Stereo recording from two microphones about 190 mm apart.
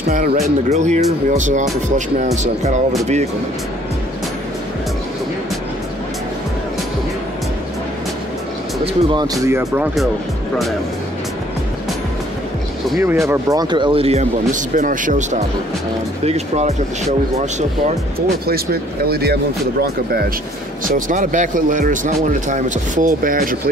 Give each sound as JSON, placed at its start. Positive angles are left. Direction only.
{"t": 0.1, "sound": "speech", "side_deg": -35}
{"t": 8.8, "sound": "speech", "side_deg": -25}
{"t": 13.3, "sound": "speech", "side_deg": -20}
{"t": 18.5, "sound": "speech", "side_deg": -55}
{"t": 20.8, "sound": "speech", "side_deg": -45}